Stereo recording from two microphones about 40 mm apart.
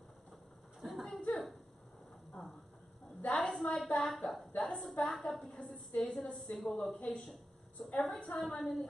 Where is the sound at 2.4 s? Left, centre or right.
Left.